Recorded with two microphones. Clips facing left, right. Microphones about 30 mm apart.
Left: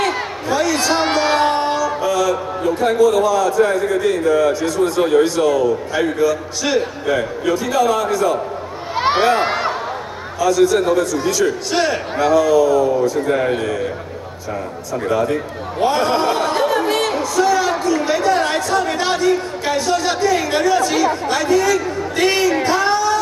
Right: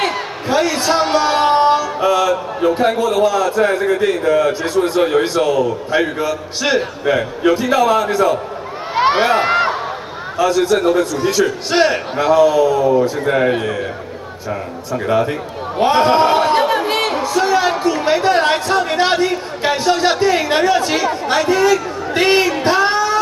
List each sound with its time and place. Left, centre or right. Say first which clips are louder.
0.5 s a man's voice: right 2 dB; right
1.1 s music: right 2 dB; centre
1.4 s a man's voice: right 4 dB; centre
10.3 s a man's voice: even; right
11.7 s a man's voice: right 3 dB; right
22.6 s a sound: right 2 dB; right